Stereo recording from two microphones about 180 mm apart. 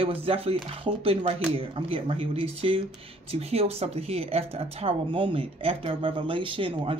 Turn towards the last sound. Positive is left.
turn(degrees=-30)  # may be behind; listen again after turning